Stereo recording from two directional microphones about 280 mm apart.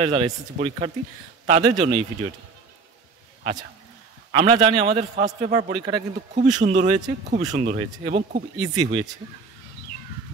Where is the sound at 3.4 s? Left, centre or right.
Right.